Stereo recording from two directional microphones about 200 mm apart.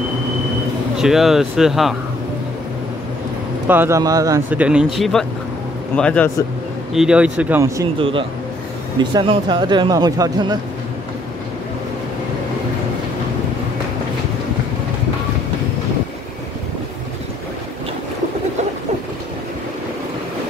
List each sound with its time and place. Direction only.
0.9 s speech: centre (ahead or behind)
3.6 s speech: 10° right (ahead or behind)
8.0 s speech: 25° right (ahead or behind)